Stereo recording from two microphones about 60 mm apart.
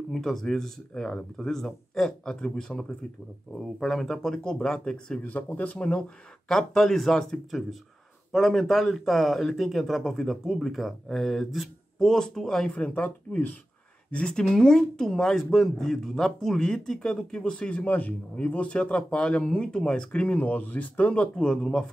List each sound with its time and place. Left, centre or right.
0.1 s speech: centre
5.2 s speech: left
5.9 s speech: centre; by 21.1 s left
21.1 s speech: centre